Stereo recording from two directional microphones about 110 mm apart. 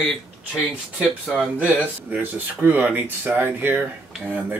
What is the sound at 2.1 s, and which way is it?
Speech, 15° right (ahead or behind).